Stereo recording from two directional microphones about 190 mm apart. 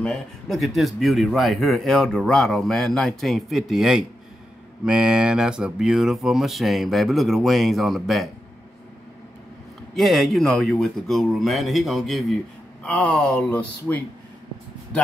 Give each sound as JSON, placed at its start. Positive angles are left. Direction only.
{"t": 0.0, "sound": "a man's voice", "side_deg": 0}
{"t": 9.9, "sound": "a man's voice", "side_deg": 0}